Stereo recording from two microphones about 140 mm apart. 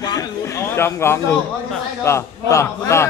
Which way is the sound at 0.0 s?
25° left (ahead or behind).